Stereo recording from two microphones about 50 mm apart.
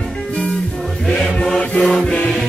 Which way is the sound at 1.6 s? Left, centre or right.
Left.